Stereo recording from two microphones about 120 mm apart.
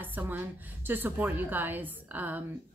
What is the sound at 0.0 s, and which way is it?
A woman's voice, 15° right (ahead or behind).